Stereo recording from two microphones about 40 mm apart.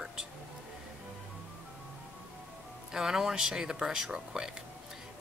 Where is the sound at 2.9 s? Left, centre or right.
Centre.